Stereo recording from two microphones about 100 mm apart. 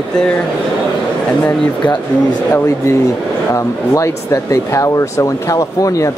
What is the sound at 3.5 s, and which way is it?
Speech, 30° left (ahead or behind).